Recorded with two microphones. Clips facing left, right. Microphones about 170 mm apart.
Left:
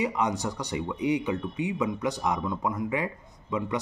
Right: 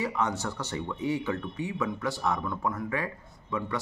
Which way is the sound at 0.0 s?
15° left (ahead or behind).